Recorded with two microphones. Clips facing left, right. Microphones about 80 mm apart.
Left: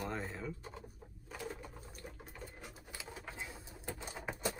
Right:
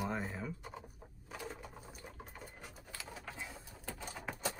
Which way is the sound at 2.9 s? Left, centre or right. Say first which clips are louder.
Right 1 dB; left.